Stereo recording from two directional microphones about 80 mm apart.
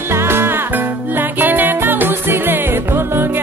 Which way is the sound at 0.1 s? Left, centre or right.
Right.